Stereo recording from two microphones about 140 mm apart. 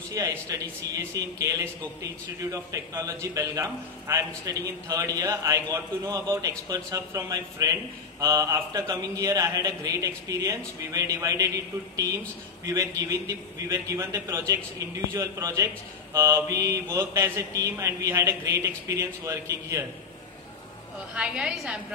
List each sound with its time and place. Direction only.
0.1 s a man's voice: 25° right (ahead or behind)
21.1 s a woman's voice: 5° right (ahead or behind)